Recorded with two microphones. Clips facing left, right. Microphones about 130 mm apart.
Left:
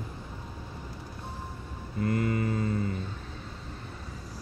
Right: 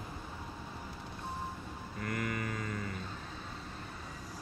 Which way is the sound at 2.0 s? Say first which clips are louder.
Left 9 dB; 30° left (ahead or behind).